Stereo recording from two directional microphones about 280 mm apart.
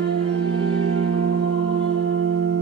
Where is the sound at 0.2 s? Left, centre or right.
Right.